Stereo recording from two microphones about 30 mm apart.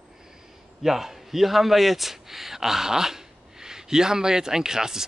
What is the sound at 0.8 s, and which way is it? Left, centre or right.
A man's voice, centre.